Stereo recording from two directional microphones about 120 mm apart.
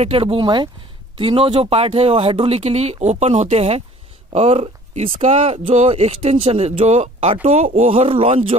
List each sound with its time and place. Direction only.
0.0 s speech: 50° right (ahead or behind)